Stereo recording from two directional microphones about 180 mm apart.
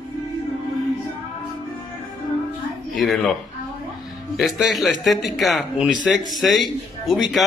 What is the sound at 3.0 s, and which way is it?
Speech, centre (ahead or behind).